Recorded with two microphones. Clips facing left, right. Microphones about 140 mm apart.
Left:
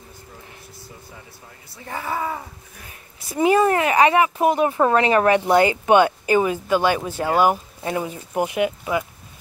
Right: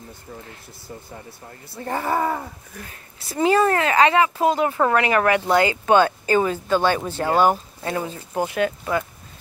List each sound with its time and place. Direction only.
1.8 s speech: 45° right (ahead or behind)
2.9 s speech: 15° left (ahead or behind)